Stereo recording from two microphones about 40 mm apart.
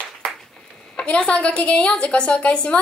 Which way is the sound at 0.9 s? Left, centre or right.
Left.